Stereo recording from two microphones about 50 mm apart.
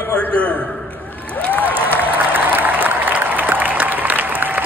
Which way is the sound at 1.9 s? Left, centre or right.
Right.